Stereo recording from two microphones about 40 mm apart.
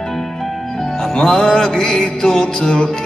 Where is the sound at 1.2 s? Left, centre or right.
Centre.